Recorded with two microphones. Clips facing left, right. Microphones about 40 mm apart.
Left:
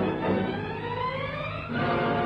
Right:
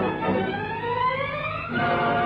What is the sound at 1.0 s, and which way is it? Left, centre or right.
Vehicle, right.